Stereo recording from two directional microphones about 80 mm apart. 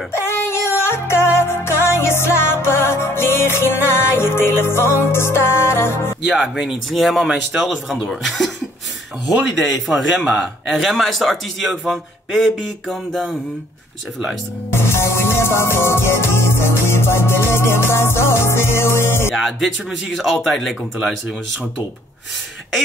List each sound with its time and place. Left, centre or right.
0.1 s music: left
6.2 s a man's voice: centre
9.5 s a man's voice: centre
14.7 s music: left
19.3 s a man's voice: centre